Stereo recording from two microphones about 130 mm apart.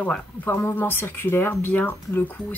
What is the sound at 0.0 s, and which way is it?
Speech, 15° left (ahead or behind).